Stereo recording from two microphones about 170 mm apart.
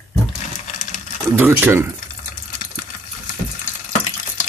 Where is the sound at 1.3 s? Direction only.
10° right (ahead or behind).